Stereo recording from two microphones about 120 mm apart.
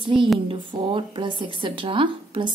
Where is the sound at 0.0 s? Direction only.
40° right (ahead or behind).